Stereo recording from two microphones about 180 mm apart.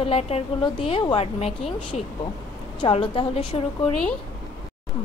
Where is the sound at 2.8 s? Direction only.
30° left (ahead or behind).